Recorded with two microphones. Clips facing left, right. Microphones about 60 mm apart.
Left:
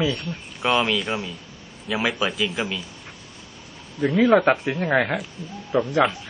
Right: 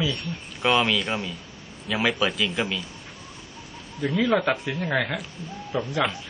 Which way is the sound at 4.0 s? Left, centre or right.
Left.